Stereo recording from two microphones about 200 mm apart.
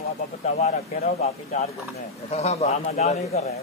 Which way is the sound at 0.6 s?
35° left (ahead or behind).